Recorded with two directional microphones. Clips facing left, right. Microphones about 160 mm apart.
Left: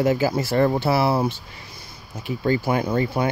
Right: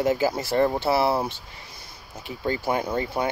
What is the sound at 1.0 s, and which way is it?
Speech, 5° left (ahead or behind).